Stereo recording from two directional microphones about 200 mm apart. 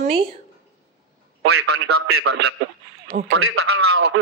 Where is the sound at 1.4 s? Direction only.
55° right (ahead or behind).